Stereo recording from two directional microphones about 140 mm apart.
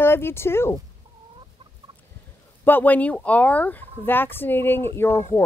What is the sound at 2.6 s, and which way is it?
A woman's voice, 15° left (ahead or behind).